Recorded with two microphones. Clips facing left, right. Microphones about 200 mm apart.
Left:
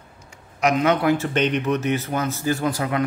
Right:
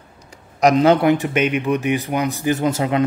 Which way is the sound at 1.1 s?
15° right (ahead or behind).